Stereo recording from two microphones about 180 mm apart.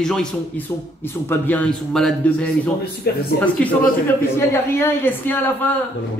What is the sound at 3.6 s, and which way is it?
A man's voice, 5° left (ahead or behind).